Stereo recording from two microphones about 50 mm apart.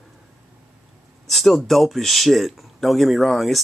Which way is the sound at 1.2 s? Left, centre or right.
Centre.